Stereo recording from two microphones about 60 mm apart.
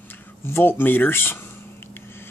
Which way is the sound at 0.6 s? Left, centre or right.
Left.